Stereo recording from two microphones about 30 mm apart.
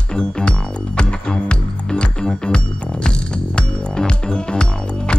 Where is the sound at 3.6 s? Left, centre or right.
Left.